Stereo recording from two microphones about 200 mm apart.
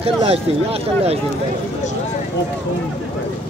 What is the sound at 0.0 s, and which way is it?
Speech, 30° right (ahead or behind).